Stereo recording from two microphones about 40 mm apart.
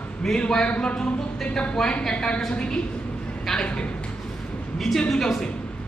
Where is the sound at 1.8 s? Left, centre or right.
Centre.